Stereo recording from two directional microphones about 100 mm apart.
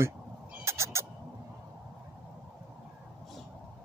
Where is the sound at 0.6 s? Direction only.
30° right (ahead or behind).